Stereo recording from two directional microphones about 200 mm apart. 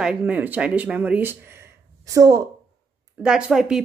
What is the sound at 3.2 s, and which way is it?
Speech, 5° right (ahead or behind).